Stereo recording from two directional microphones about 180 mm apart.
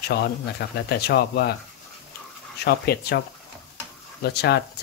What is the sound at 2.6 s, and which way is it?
Speech, 60° left (ahead or behind).